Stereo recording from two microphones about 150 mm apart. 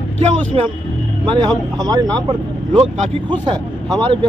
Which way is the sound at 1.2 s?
30° right (ahead or behind).